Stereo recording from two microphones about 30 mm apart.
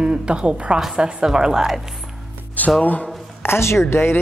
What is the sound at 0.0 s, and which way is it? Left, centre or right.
Speech, right.